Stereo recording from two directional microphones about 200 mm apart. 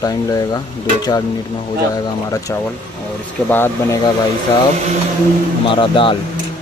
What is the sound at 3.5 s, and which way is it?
Speech, 10° left (ahead or behind).